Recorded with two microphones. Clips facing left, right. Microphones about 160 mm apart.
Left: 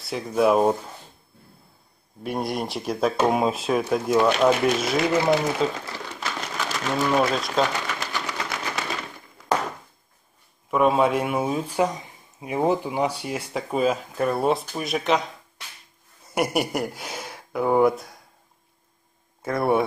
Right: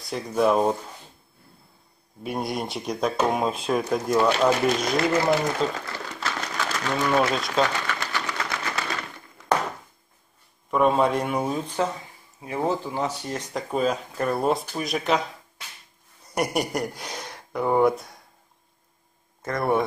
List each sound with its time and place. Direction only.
0.0 s speech: 5° left (ahead or behind)
2.2 s speech: centre (ahead or behind)
7.9 s a sound: 15° left (ahead or behind)
10.7 s speech: 5° left (ahead or behind)
19.4 s speech: 5° left (ahead or behind)